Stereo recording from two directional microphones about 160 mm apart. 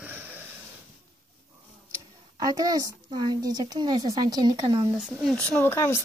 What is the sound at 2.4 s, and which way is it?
A woman's voice, 25° right (ahead or behind).